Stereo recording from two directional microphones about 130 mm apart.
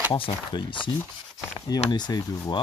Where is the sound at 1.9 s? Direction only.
30° left (ahead or behind).